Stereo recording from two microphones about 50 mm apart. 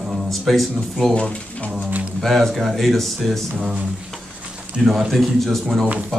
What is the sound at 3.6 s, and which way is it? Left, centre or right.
Speech, centre.